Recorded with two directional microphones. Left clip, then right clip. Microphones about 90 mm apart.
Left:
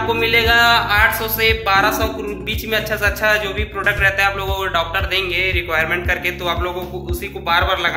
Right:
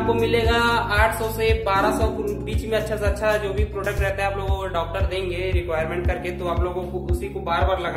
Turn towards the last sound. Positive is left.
turn(degrees=-30)  # may be behind; listen again after turning